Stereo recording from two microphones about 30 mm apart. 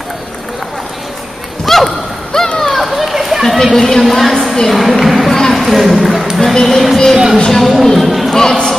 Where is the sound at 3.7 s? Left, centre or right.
Centre.